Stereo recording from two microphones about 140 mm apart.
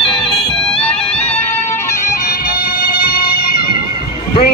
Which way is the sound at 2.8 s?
90° left.